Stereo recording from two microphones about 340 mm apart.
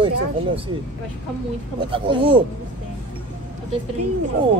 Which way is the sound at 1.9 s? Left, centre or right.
Centre.